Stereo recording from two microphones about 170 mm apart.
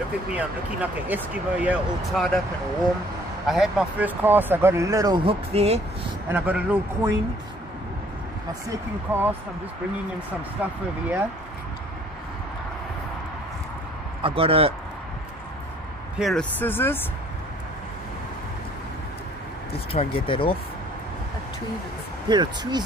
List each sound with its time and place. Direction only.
0.3 s speech: 10° right (ahead or behind)
3.4 s speech: centre (ahead or behind); by 5.8 s 35° right (ahead or behind)
6.2 s speech: 10° right (ahead or behind)
8.6 s speech: 15° right (ahead or behind)
10.6 s speech: 10° right (ahead or behind)
14.2 s speech: 35° right (ahead or behind)
16.2 s speech: centre (ahead or behind)
16.5 s speech: 10° left (ahead or behind)
19.9 s speech: 45° left (ahead or behind)
20.2 s speech: 30° left (ahead or behind)
22.3 s speech: 25° right (ahead or behind)